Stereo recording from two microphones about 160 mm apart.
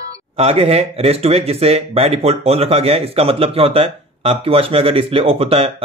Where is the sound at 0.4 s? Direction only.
40° right (ahead or behind).